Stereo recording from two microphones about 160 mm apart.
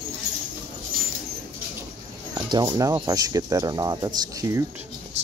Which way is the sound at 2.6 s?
20° right (ahead or behind).